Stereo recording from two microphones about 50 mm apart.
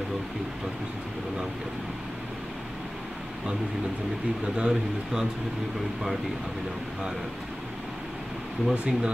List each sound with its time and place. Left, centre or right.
4.6 s a man's voice: centre
8.7 s speech: right